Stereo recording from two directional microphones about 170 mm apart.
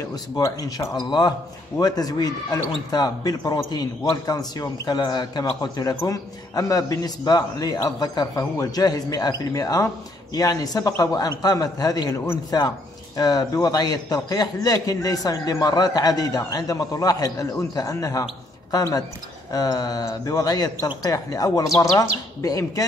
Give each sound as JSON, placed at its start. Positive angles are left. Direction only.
{"t": 0.1, "sound": "a man's voice", "side_deg": 20}